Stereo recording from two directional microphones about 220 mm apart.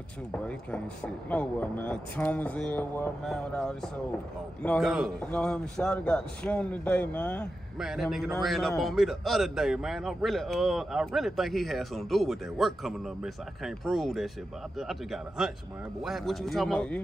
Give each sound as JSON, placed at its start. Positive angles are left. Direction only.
{"t": 0.3, "sound": "a man's voice", "side_deg": 5}